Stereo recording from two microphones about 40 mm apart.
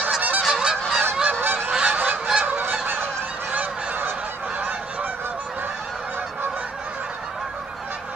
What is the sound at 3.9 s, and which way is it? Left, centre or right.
Goose, right.